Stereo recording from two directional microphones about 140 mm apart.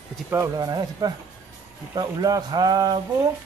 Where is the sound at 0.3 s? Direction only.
25° right (ahead or behind).